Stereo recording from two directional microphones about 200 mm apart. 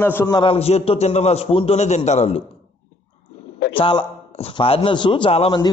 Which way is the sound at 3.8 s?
25° left (ahead or behind).